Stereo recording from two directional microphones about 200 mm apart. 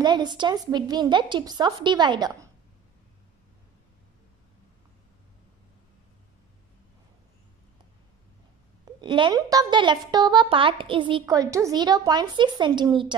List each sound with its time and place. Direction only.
0.0 s a woman's voice: 20° right (ahead or behind)
9.0 s a woman's voice: 25° right (ahead or behind)